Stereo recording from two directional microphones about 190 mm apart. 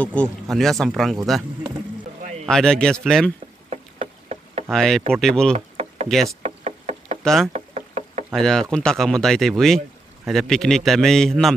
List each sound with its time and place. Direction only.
0.0 s speech: 5° left (ahead or behind)
2.4 s speech: 5° left (ahead or behind)
3.7 s a sound: 35° right (ahead or behind)
4.6 s speech: centre (ahead or behind)
6.2 s knock: 35° right (ahead or behind)
7.2 s speech: centre (ahead or behind)
7.5 s knock: 35° right (ahead or behind)
8.3 s speech: centre (ahead or behind)